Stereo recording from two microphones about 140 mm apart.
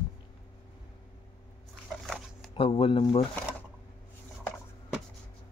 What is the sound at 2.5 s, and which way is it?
Speech, 40° left (ahead or behind).